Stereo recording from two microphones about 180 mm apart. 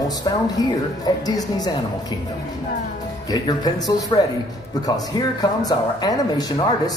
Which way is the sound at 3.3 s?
25° left (ahead or behind).